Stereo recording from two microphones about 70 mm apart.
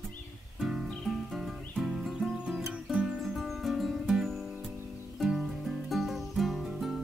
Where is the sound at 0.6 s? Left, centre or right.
Centre.